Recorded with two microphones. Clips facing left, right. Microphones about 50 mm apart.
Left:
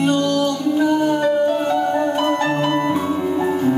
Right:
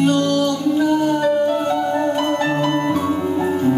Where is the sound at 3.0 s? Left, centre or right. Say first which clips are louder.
Even; centre.